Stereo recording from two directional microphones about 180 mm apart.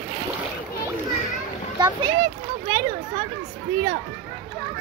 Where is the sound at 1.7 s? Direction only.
25° right (ahead or behind).